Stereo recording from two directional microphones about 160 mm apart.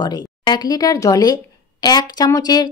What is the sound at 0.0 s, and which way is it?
A woman's voice, 25° left (ahead or behind).